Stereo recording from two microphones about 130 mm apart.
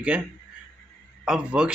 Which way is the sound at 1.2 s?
5° right (ahead or behind).